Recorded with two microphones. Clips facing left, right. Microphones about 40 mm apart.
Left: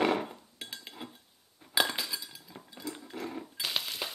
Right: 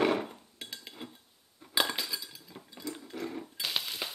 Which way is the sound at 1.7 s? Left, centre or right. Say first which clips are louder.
Left 1 dB; centre.